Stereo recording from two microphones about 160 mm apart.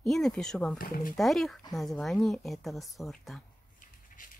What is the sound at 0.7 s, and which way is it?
Speech, 60° left (ahead or behind).